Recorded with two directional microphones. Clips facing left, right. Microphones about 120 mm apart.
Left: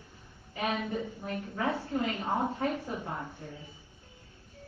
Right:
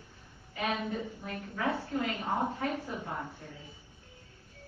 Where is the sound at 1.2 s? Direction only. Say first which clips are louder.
Left 2 dB; 25° left (ahead or behind).